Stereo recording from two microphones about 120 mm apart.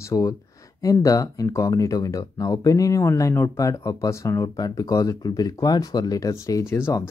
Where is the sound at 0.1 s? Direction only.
30° left (ahead or behind).